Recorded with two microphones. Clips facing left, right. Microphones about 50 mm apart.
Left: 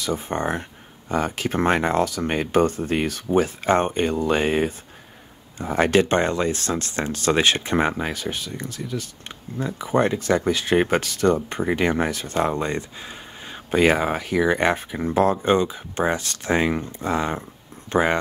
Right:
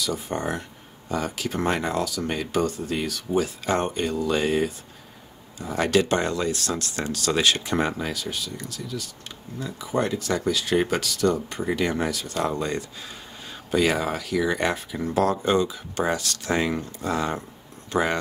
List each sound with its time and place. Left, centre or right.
0.0 s speech: left